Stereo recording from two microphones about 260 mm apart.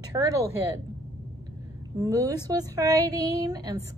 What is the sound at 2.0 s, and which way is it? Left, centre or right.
Speech, centre.